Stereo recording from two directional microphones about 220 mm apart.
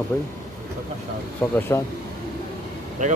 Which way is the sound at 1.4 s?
5° left (ahead or behind).